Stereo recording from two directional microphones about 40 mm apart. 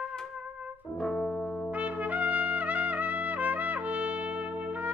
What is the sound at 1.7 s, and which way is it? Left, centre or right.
Trumpet, right.